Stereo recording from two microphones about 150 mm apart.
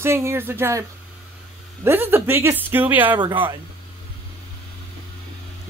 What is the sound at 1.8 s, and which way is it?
A woman's voice, 15° right (ahead or behind).